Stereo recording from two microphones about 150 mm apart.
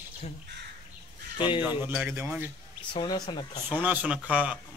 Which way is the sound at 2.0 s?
15° right (ahead or behind).